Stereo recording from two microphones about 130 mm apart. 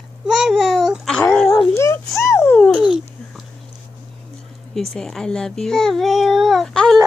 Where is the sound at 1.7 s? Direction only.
20° left (ahead or behind).